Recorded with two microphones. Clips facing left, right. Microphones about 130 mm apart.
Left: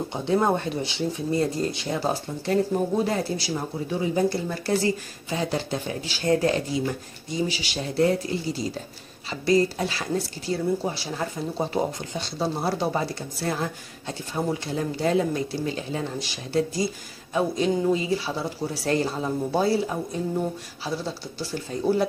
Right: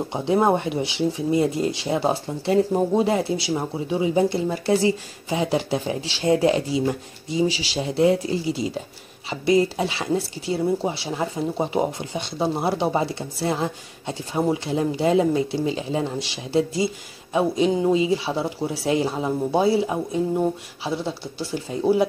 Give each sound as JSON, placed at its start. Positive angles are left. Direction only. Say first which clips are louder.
{"t": 0.1, "sound": "speech", "louder": "right 3 dB", "side_deg": -20}
{"t": 6.2, "sound": "speech", "louder": "right 3 dB", "side_deg": -20}
{"t": 7.8, "sound": "speech", "louder": "right 3 dB", "side_deg": -20}
{"t": 18.9, "sound": "speech", "louder": "right 2 dB", "side_deg": -10}